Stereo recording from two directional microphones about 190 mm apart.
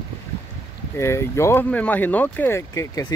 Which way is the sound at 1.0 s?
15° left (ahead or behind).